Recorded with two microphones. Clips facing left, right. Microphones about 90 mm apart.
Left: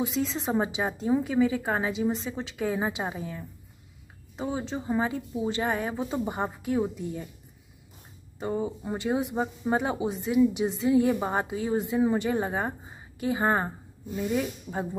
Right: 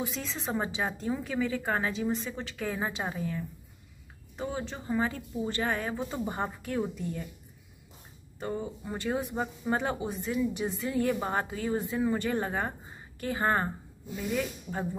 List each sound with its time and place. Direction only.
0.0 s speech: 15° left (ahead or behind)
8.4 s speech: 15° left (ahead or behind)